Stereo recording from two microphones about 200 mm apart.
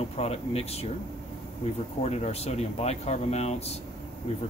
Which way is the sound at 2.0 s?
35° left (ahead or behind).